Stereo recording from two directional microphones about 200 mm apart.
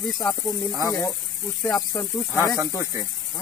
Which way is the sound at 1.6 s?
20° left (ahead or behind).